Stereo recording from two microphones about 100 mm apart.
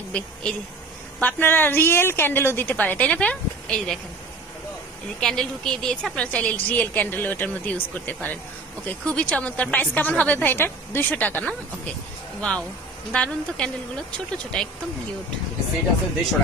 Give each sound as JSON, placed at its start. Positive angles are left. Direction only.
{"t": 0.1, "sound": "a woman's voice", "side_deg": 10}
{"t": 1.2, "sound": "a woman's voice", "side_deg": 20}
{"t": 5.2, "sound": "a woman's voice", "side_deg": 5}